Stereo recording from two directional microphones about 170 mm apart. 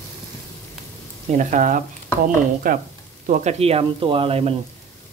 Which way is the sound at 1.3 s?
50° right (ahead or behind).